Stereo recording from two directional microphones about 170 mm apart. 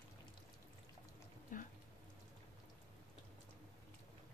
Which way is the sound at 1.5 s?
50° left (ahead or behind).